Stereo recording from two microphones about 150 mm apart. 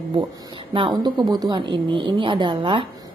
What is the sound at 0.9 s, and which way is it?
A woman's voice, 25° right (ahead or behind).